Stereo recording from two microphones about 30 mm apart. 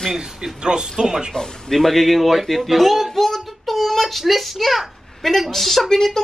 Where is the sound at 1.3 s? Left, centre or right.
Centre.